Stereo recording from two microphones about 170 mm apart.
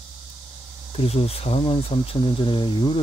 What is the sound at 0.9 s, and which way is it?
Speech, 35° left (ahead or behind).